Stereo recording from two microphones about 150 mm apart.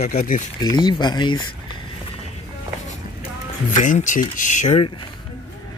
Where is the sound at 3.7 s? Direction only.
55° left (ahead or behind).